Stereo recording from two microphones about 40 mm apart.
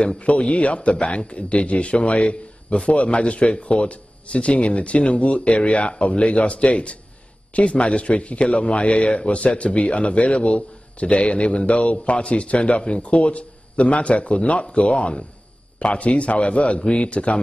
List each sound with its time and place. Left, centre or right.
0.0 s a man's voice: left